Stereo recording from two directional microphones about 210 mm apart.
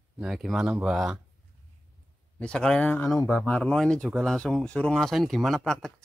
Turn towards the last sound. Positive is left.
turn(degrees=0)  # may be behind; listen again after turning